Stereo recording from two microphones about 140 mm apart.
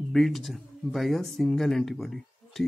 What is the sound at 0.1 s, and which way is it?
A man's voice, centre (ahead or behind).